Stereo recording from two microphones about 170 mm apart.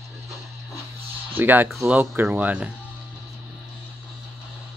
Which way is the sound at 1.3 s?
10° right (ahead or behind).